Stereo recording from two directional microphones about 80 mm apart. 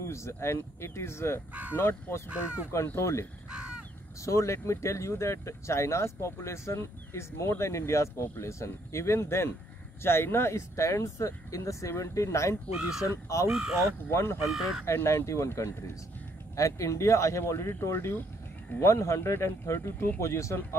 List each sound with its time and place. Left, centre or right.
0.0 s speech: left
1.5 s speech: centre
1.8 s speech: left
3.4 s crow: centre
4.2 s speech: left
12.7 s speech: centre
13.0 s speech: left
13.5 s speech: centre
14.0 s speech: left
14.5 s speech: centre
14.9 s speech: left